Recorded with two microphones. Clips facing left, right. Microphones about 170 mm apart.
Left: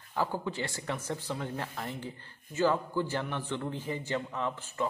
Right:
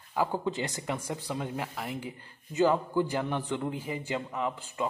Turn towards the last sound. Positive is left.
turn(degrees=-15)  # may be behind; listen again after turning